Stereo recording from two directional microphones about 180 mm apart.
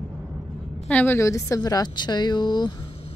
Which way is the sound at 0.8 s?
10° left (ahead or behind).